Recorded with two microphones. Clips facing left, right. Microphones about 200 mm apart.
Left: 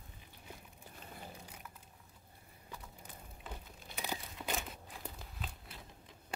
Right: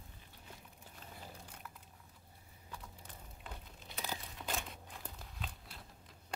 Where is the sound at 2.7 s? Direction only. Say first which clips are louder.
Left 1 dB; 5° left (ahead or behind).